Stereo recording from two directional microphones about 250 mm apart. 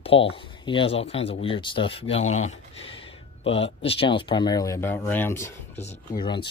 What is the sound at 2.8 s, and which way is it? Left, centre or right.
Speech, left.